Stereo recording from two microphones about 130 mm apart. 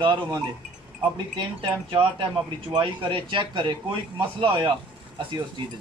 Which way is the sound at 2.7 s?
35° right (ahead or behind).